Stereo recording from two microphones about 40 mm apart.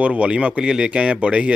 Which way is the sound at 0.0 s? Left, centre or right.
Right.